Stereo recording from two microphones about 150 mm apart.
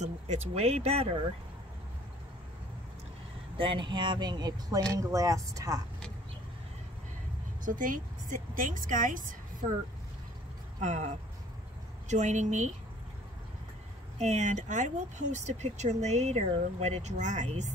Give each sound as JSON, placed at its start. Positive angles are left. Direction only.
{"t": 0.0, "sound": "speech", "side_deg": -50}
{"t": 3.5, "sound": "speech", "side_deg": -35}
{"t": 7.6, "sound": "a woman's voice", "side_deg": -60}
{"t": 10.8, "sound": "a woman's voice", "side_deg": -50}
{"t": 14.1, "sound": "speech", "side_deg": -50}